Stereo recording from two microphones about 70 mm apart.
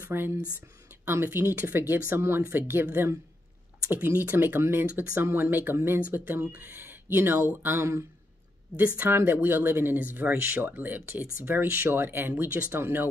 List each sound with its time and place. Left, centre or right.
0.0 s speech: right
8.7 s speech: right